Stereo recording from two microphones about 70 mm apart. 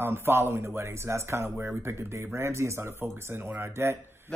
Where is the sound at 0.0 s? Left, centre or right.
Right.